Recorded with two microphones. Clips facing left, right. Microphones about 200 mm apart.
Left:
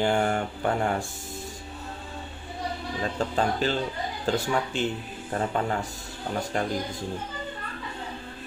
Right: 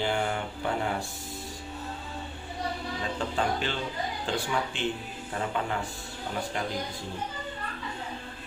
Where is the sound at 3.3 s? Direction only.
40° left (ahead or behind).